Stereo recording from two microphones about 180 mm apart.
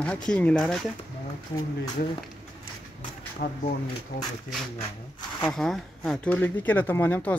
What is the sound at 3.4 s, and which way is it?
Speech, 60° left (ahead or behind).